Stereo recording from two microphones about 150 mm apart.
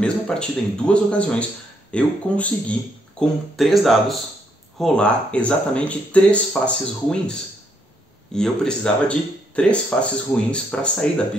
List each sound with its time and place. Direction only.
0.0 s speech: 5° left (ahead or behind)
8.4 s speech: 5° left (ahead or behind)